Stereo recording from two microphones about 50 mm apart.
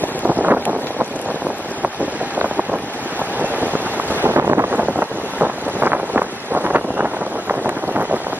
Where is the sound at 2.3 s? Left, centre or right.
Right.